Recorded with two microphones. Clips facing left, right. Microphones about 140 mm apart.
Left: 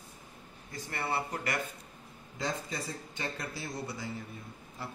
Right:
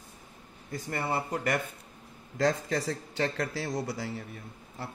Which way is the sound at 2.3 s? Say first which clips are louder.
Right 9 dB; 90° right.